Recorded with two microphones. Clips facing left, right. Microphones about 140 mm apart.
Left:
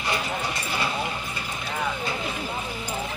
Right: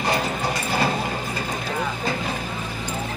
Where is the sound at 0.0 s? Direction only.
40° right (ahead or behind).